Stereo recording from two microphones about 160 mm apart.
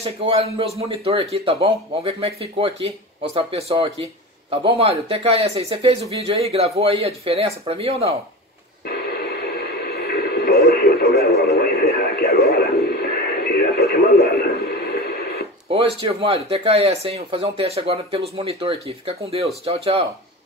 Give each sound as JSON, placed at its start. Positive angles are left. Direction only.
{"t": 0.0, "sound": "speech", "side_deg": -35}
{"t": 8.8, "sound": "radio", "side_deg": 85}
{"t": 16.0, "sound": "speech", "side_deg": -35}